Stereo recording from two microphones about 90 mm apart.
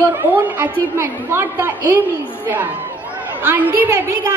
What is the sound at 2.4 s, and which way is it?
A woman's voice, 20° right (ahead or behind).